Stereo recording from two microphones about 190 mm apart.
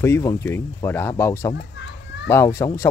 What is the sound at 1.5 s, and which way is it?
Children playing, 65° left (ahead or behind).